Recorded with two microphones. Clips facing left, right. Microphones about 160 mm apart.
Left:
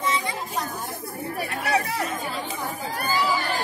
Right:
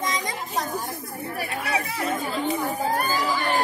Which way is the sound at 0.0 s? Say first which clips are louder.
Left 1 dB; 40° right (ahead or behind).